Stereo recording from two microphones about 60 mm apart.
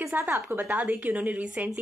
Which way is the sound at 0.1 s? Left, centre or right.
Right.